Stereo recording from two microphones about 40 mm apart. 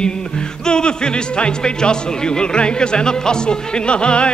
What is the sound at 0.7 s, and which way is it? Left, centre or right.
Speech, centre.